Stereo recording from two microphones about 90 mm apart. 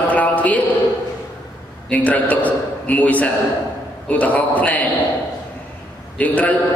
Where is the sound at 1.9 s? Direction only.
15° left (ahead or behind).